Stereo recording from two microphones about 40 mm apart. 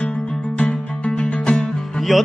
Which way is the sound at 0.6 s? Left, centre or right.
Left.